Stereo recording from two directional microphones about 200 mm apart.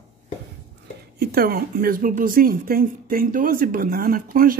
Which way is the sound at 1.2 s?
50° right (ahead or behind).